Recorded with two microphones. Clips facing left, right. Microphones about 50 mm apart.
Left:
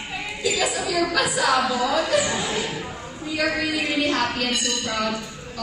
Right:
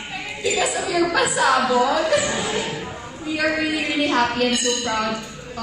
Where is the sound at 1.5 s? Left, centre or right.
Centre.